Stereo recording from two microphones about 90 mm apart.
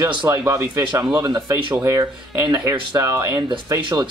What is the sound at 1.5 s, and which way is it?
Speech, 25° right (ahead or behind).